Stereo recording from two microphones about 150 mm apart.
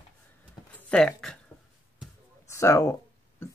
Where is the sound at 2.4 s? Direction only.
20° left (ahead or behind).